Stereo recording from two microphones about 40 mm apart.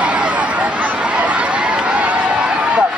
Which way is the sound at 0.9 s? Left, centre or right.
Right.